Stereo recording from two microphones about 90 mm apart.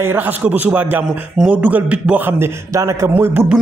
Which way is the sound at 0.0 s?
20° right (ahead or behind).